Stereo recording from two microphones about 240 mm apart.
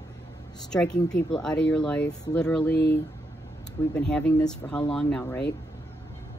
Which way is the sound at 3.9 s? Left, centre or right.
Centre.